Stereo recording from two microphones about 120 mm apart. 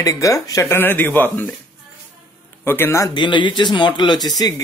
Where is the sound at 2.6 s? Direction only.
20° left (ahead or behind).